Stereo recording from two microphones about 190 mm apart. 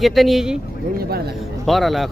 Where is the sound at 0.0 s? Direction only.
Centre (ahead or behind).